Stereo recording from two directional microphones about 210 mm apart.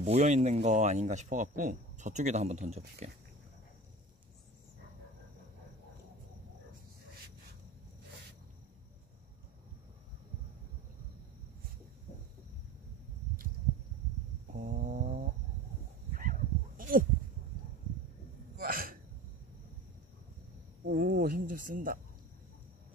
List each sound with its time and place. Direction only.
0.0 s speech: 30° right (ahead or behind)
12.1 s a sound: 35° left (ahead or behind)
14.5 s a sound: 40° right (ahead or behind)
16.1 s dog: 40° right (ahead or behind)
18.6 s hiccup: 45° right (ahead or behind)
20.8 s speech: 45° right (ahead or behind)